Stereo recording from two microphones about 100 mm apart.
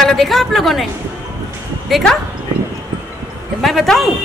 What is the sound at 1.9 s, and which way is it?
Speech, centre (ahead or behind).